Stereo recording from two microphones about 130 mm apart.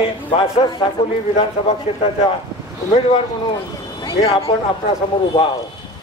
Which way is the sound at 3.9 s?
40° left (ahead or behind).